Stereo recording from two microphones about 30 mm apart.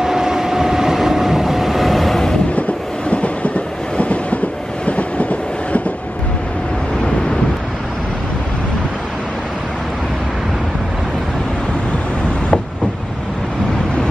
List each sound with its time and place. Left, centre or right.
0.0 s vehicle: centre
3.1 s train: left